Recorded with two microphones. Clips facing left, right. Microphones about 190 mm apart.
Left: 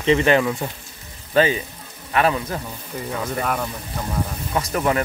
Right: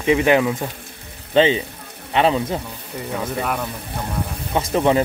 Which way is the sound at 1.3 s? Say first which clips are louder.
Right 3 dB; 25° right (ahead or behind).